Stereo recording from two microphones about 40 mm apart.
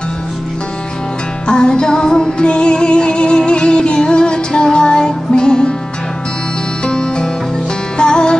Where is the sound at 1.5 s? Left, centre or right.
Left.